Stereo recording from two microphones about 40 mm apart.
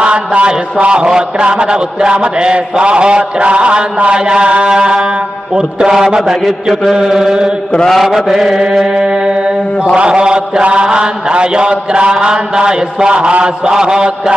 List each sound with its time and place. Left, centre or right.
0.0 s a sound: right
0.5 s a man's voice: right
6.4 s mantra: centre
6.9 s a man's voice: centre
8.9 s a man's voice: centre